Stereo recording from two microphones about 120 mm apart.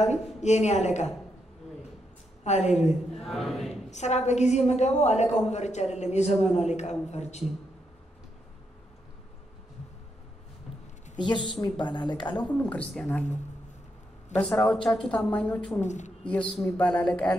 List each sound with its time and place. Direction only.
0.0 s a woman's voice: 70° left (ahead or behind)
2.4 s a woman's voice: 70° left (ahead or behind)
2.9 s speech: centre (ahead or behind)
3.9 s a woman's voice: 70° left (ahead or behind)
11.1 s speech: 40° left (ahead or behind)
12.4 s speech: 10° left (ahead or behind)
14.3 s speech: 10° left (ahead or behind)
15.8 s speech: 80° left
16.3 s speech: 5° left (ahead or behind)